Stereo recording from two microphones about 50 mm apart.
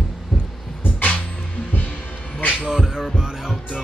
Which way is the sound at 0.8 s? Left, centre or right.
Left.